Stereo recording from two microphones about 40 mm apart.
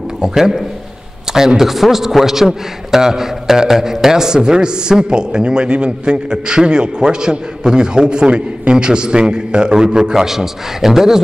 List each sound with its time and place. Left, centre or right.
0.2 s a man's voice: centre